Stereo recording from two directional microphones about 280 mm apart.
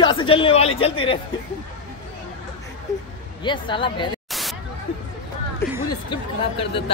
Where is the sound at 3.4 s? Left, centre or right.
Centre.